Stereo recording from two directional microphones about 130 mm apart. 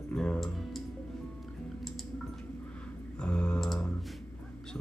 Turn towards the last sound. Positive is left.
turn(degrees=5)  # may be behind; listen again after turning